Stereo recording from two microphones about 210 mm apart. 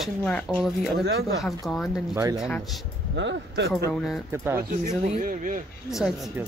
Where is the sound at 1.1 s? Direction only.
50° right (ahead or behind).